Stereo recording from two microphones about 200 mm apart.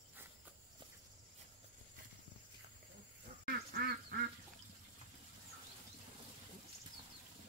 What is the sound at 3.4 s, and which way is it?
Duck, 50° right (ahead or behind).